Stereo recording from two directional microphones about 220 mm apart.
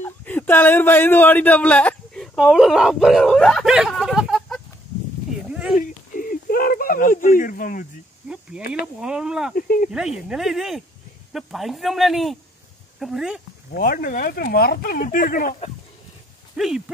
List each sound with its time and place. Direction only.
0.0 s speech: 10° left (ahead or behind)
5.5 s a sound: 5° right (ahead or behind)
5.8 s a sound: 40° left (ahead or behind)
9.0 s speech: 5° right (ahead or behind)
9.6 s speech: 40° left (ahead or behind)
9.8 s speech: 5° right (ahead or behind)
13.7 s speech: 40° left (ahead or behind)
16.5 s speech: centre (ahead or behind)